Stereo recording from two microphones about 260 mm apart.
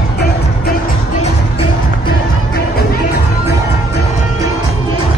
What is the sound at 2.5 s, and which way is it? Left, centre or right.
Music, left.